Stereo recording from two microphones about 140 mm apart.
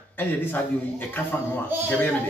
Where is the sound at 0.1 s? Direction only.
15° left (ahead or behind).